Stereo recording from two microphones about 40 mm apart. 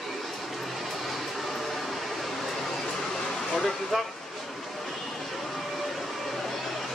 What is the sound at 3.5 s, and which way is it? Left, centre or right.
Speech, centre.